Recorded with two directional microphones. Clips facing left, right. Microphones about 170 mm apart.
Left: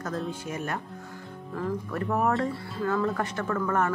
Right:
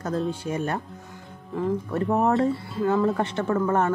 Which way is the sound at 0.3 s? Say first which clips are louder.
Right 5 dB; 30° right (ahead or behind).